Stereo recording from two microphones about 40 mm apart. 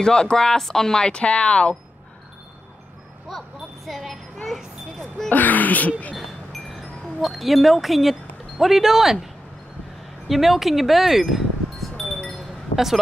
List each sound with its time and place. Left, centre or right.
0.0 s speech: centre
3.3 s a sound: centre
4.5 s vehicle: centre
5.3 s speech: left
6.1 s a sound: centre
7.2 s speech: centre
12.4 s chink: centre